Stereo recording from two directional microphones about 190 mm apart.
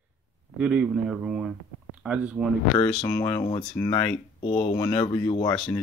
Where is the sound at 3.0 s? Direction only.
15° left (ahead or behind).